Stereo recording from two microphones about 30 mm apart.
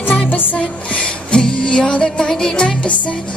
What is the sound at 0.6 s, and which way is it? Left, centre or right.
Music, left.